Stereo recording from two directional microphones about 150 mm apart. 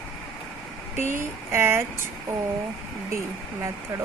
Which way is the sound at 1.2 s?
15° right (ahead or behind).